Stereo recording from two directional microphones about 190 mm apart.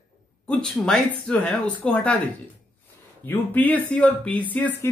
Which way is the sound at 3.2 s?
10° left (ahead or behind).